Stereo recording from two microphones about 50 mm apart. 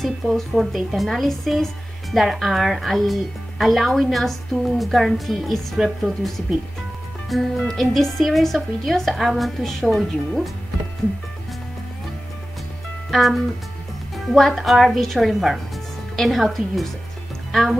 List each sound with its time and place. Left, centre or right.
0.0 s a woman's voice: centre
7.2 s a woman's voice: centre
9.2 s a woman's voice: centre
9.6 s a woman's voice: centre
13.1 s a woman's voice: centre